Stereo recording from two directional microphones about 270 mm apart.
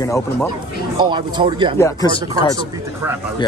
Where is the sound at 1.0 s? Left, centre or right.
Centre.